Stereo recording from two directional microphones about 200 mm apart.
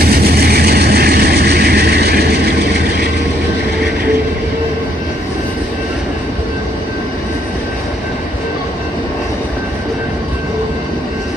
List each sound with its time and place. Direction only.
0.0 s vehicle: 50° right (ahead or behind)